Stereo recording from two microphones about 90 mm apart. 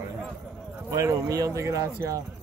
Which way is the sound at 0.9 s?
35° right (ahead or behind).